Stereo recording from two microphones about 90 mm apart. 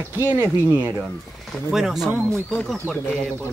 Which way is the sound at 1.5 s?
Centre (ahead or behind).